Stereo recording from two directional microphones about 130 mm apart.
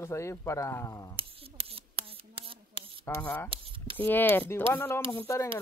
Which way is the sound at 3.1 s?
15° left (ahead or behind).